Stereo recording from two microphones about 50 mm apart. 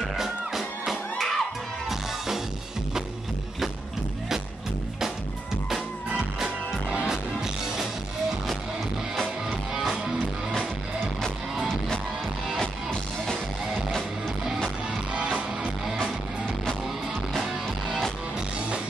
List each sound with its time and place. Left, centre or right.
0.0 s music: centre
6.1 s music: centre
9.1 s music: centre
15.1 s music: right
16.0 s music: centre